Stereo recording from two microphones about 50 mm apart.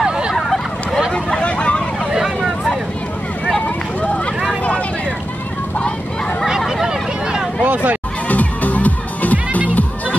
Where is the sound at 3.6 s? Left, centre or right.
Left.